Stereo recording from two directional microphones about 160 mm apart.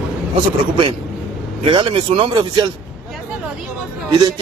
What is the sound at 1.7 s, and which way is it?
Speech, 35° right (ahead or behind).